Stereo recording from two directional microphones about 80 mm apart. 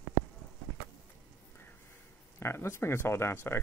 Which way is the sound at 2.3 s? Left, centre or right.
Left.